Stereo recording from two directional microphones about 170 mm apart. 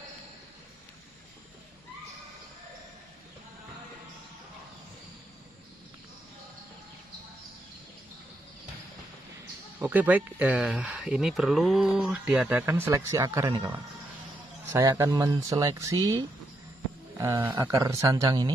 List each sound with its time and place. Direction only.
9.8 s speech: 10° right (ahead or behind)